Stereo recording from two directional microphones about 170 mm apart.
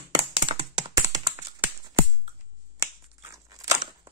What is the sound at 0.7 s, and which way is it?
Computer keyboard, 25° right (ahead or behind).